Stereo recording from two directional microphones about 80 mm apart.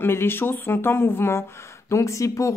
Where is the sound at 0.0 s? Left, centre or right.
Left.